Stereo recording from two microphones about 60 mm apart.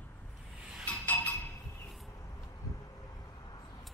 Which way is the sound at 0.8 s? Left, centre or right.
Left.